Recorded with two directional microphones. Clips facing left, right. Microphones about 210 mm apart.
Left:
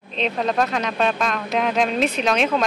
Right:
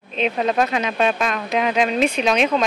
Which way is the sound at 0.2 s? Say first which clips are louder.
Right 2 dB; 5° right (ahead or behind).